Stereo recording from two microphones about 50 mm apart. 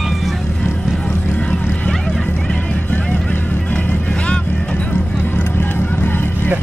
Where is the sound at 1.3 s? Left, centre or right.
Left.